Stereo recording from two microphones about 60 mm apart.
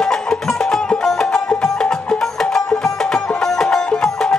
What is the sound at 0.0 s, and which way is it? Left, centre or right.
Music, centre.